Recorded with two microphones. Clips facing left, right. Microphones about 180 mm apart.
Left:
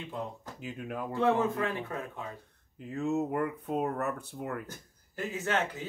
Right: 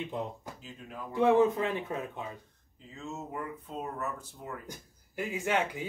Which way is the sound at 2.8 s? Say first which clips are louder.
Left 11 dB; 60° left (ahead or behind).